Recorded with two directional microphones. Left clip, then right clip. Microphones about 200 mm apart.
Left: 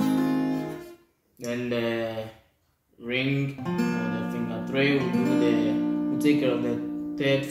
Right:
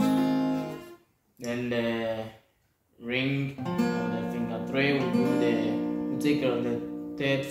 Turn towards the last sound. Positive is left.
turn(degrees=-5)  # may be behind; listen again after turning